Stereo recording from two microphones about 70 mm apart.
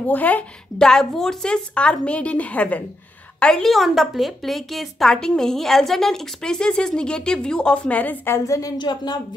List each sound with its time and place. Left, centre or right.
0.0 s a woman's voice: left
0.7 s a woman's voice: centre
3.7 s a woman's voice: centre; by 8.2 s left
8.5 s a woman's voice: left
8.7 s a woman's voice: left